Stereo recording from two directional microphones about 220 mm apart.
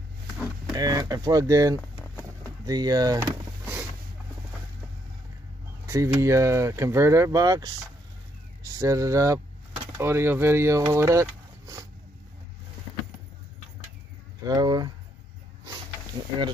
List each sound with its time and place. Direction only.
0.7 s speech: 15° right (ahead or behind)
5.9 s speech: 15° right (ahead or behind)
8.7 s speech: 15° right (ahead or behind)
14.4 s speech: 15° right (ahead or behind)